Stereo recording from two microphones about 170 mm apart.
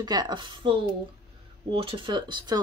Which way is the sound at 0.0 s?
25° right (ahead or behind).